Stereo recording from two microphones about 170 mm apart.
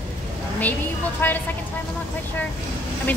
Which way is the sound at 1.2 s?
10° left (ahead or behind).